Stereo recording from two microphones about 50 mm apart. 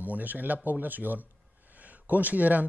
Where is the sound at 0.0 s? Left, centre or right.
Right.